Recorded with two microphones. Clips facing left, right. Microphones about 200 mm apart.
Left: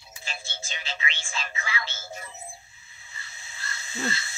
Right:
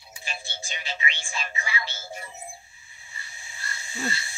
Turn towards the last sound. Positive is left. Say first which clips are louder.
# left 1 dB
turn(degrees=-15)  # may be behind; listen again after turning